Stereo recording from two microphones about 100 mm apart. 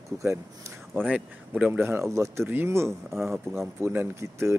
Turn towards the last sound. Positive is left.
turn(degrees=-30)  # may be behind; listen again after turning